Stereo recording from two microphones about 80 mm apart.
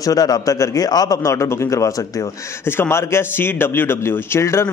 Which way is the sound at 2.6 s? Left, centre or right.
Left.